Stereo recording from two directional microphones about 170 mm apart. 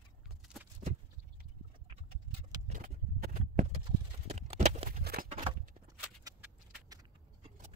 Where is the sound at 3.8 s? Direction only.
40° right (ahead or behind).